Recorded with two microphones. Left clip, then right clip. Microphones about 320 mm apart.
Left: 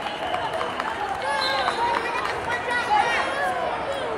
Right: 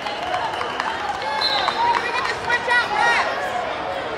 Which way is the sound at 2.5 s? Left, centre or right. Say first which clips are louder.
Right 4 dB; right.